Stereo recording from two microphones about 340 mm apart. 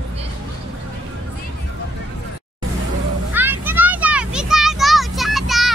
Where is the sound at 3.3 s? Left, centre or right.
Centre.